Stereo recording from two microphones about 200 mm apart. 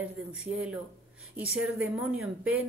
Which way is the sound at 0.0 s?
5° right (ahead or behind).